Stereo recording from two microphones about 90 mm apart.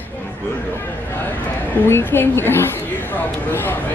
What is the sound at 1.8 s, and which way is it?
Speech, 25° left (ahead or behind).